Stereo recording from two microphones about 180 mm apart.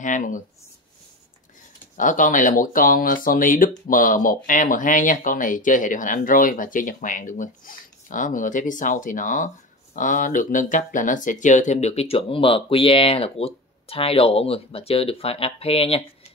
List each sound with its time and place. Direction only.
0.0 s speech: 45° left (ahead or behind)
2.0 s speech: 45° left (ahead or behind)